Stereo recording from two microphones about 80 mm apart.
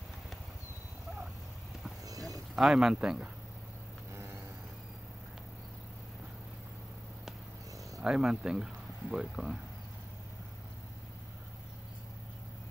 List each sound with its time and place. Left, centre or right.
2.0 s a sound: right
2.5 s a man's voice: centre
4.1 s vehicle: right
8.0 s a man's voice: centre